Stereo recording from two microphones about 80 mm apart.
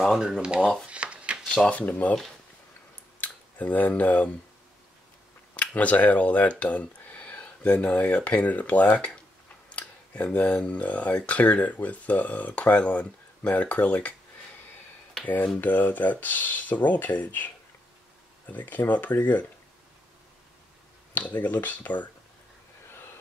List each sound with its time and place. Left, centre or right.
0.4 s speech: centre
0.8 s a sound: centre
1.4 s a sound: centre
1.7 s speech: centre
3.2 s speech: centre
5.8 s speech: centre
15.2 s speech: left
18.5 s speech: left
21.1 s speech: left